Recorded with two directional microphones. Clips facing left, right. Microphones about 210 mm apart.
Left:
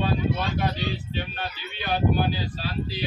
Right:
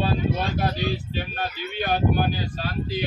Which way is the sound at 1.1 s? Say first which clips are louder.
Right 2 dB; 45° right (ahead or behind).